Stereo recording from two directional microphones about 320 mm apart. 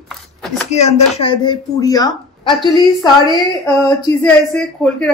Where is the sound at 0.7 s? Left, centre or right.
Centre.